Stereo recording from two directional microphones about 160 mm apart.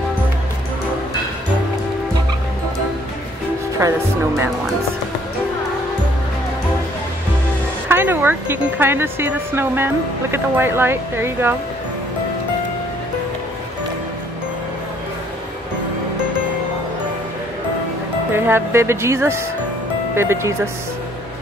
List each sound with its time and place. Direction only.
3.8 s speech: 20° right (ahead or behind)
7.9 s speech: 15° right (ahead or behind)
18.3 s speech: 15° right (ahead or behind)